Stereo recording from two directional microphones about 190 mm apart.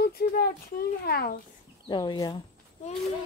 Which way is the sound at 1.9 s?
25° left (ahead or behind).